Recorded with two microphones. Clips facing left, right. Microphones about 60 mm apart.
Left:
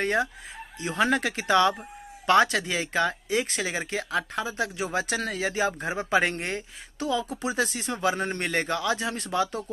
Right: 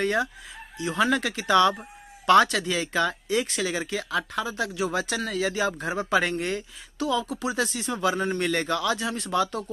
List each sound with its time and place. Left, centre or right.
0.0 s speech: left